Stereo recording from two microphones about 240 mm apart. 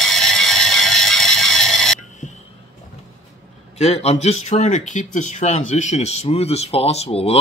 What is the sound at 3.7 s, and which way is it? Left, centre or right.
Speech, left.